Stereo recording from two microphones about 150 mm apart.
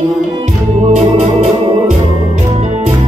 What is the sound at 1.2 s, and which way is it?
Organ, 50° right (ahead or behind).